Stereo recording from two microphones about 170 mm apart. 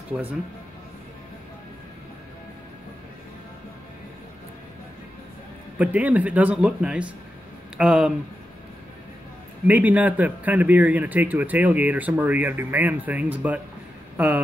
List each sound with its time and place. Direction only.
5.8 s speech: 10° right (ahead or behind)
9.7 s speech: 10° right (ahead or behind)